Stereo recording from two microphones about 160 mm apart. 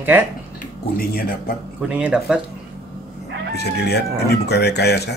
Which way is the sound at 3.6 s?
90° left.